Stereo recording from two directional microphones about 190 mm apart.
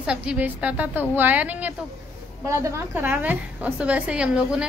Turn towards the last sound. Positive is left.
turn(degrees=-5)  # may be behind; listen again after turning